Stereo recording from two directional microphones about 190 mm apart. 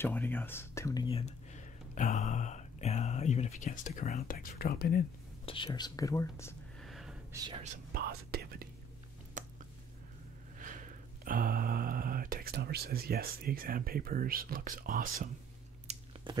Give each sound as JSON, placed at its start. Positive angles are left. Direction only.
{"t": 0.0, "sound": "speech", "side_deg": 10}
{"t": 1.0, "sound": "speech", "side_deg": 35}
{"t": 5.4, "sound": "speech", "side_deg": 25}
{"t": 6.8, "sound": "a sound", "side_deg": 0}
{"t": 7.6, "sound": "speech", "side_deg": -45}
{"t": 9.4, "sound": "a sound", "side_deg": -40}
{"t": 10.6, "sound": "speech", "side_deg": -45}
{"t": 15.9, "sound": "chewing", "side_deg": -35}
{"t": 16.3, "sound": "speech", "side_deg": -25}